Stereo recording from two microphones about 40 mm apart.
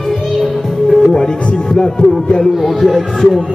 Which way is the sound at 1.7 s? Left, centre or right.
Left.